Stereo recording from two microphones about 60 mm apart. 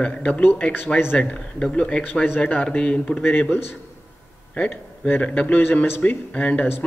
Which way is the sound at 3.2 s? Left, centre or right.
Left.